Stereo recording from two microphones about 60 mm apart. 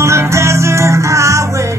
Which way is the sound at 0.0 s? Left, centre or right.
Right.